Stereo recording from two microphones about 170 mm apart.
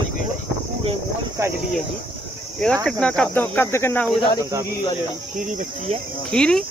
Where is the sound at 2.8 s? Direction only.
5° left (ahead or behind).